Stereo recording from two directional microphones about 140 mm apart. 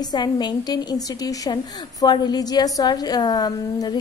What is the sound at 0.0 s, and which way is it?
A woman's voice, 30° left (ahead or behind).